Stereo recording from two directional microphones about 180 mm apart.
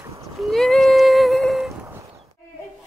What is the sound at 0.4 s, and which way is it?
Humming, centre (ahead or behind).